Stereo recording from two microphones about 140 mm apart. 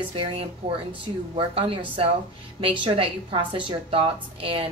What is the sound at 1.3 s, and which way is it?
A woman's voice, 40° right (ahead or behind).